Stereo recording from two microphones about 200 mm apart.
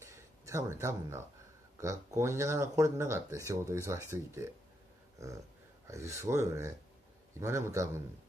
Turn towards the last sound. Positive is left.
turn(degrees=-15)  # may be behind; listen again after turning